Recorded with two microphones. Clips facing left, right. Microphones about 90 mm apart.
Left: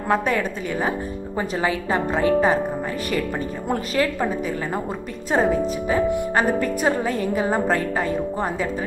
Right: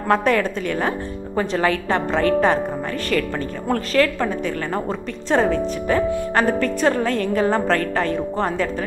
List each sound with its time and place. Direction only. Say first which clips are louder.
0.1 s a woman's voice: right 3 dB; 10° left (ahead or behind)